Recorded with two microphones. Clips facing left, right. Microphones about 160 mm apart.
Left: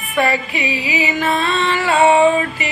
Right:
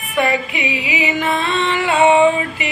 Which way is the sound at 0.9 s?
20° right (ahead or behind).